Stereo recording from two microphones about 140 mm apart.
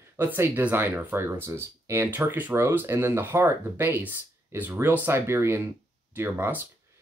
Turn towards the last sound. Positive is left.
turn(degrees=-15)  # may be behind; listen again after turning